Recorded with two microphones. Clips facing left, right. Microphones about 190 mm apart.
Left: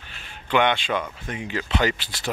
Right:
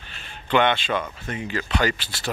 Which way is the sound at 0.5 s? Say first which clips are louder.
Right 1 dB; 15° left (ahead or behind).